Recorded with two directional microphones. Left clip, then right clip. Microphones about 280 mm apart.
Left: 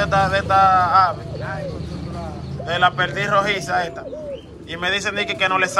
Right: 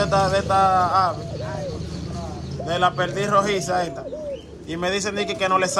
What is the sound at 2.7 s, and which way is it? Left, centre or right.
Speech, right.